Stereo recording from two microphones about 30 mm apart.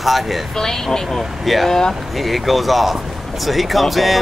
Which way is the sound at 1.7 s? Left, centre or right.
Centre.